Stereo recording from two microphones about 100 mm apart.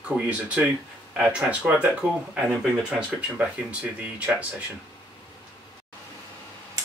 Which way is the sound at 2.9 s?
10° right (ahead or behind).